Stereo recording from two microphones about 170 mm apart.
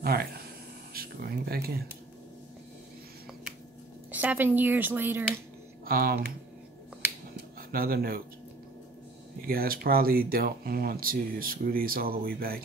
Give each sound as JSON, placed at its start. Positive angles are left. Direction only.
{"t": 0.0, "sound": "speech", "side_deg": -65}
{"t": 0.9, "sound": "a sound", "side_deg": -65}
{"t": 4.2, "sound": "a woman's voice", "side_deg": -10}
{"t": 5.9, "sound": "speech", "side_deg": -60}
{"t": 7.7, "sound": "speech", "side_deg": -60}
{"t": 9.5, "sound": "speech", "side_deg": -60}